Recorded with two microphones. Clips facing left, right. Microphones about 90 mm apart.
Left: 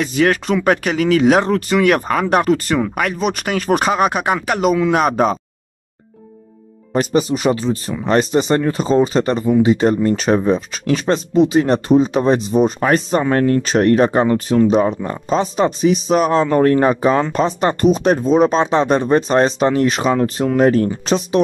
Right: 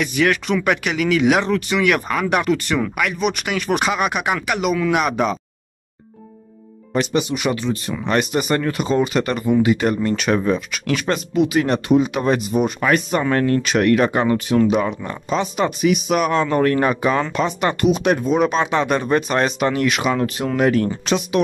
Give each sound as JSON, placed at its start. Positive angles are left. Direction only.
{"t": 0.0, "sound": "speech", "side_deg": 35}
{"t": 6.9, "sound": "speech", "side_deg": 35}